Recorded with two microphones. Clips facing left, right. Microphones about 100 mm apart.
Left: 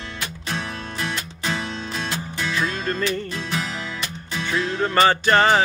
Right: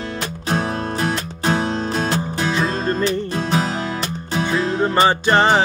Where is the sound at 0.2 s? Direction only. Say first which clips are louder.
Right 7 dB; 40° right (ahead or behind).